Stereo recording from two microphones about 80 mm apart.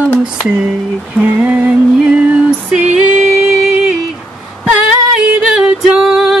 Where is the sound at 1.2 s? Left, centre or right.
Right.